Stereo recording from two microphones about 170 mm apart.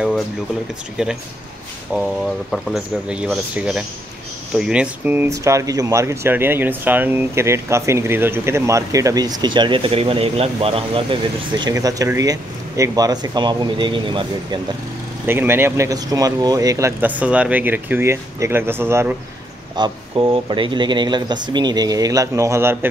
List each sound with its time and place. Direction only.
1.0 s speech: 5° right (ahead or behind); by 14.6 s 30° right (ahead or behind)
15.2 s speech: 15° right (ahead or behind)
19.7 s speech: 30° right (ahead or behind)